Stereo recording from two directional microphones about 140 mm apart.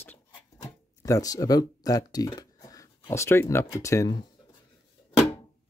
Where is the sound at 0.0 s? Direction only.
20° left (ahead or behind).